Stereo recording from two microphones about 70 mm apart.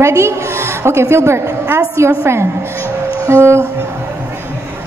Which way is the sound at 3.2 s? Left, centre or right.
Right.